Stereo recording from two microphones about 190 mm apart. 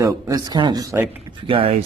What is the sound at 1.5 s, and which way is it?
Speech, 30° right (ahead or behind).